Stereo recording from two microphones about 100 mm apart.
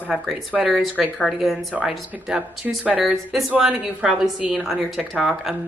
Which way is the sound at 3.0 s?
Centre (ahead or behind).